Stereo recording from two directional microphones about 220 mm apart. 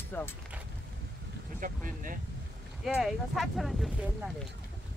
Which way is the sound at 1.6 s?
40° right (ahead or behind).